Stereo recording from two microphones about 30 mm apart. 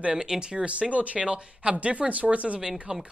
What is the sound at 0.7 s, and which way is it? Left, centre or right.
Speech, right.